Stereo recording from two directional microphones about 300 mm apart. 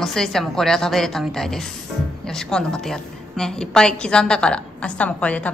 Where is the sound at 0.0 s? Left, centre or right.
Centre.